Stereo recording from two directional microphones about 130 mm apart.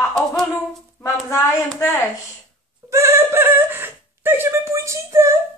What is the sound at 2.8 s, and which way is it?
Speech, 20° right (ahead or behind).